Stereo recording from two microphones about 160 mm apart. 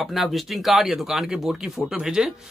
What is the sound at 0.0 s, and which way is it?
Speech, centre (ahead or behind).